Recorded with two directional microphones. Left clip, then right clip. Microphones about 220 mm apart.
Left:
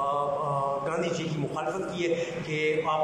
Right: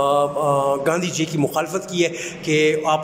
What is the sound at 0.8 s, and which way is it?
A man's voice, 50° right (ahead or behind).